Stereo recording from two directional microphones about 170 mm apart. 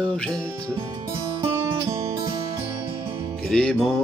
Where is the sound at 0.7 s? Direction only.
30° right (ahead or behind).